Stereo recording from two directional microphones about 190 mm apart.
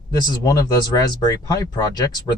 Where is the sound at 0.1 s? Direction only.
20° left (ahead or behind).